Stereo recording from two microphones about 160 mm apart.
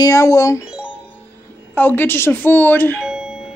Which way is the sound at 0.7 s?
5° right (ahead or behind).